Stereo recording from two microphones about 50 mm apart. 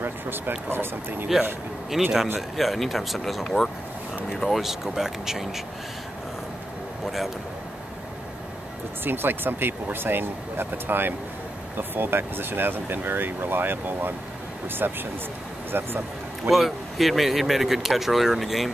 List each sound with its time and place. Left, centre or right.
0.7 s speech: right
2.0 s speech: centre
3.4 s speech: centre
4.4 s speech: centre
7.1 s speech: centre
9.0 s speech: right
16.4 s speech: centre